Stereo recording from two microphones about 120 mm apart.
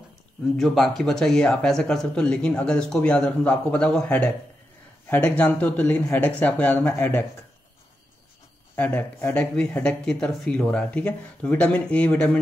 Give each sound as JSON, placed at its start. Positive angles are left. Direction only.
{"t": 0.6, "sound": "a man's voice", "side_deg": 0}
{"t": 8.7, "sound": "speech", "side_deg": 15}